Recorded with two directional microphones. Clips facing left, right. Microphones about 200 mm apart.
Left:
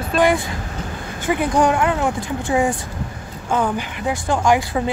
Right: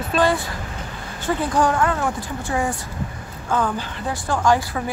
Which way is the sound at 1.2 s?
15° left (ahead or behind).